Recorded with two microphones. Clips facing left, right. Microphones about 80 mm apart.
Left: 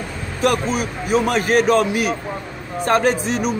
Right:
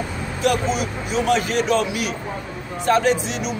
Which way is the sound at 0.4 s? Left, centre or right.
Left.